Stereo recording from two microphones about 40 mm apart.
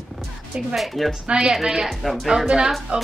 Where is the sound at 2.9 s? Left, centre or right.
Right.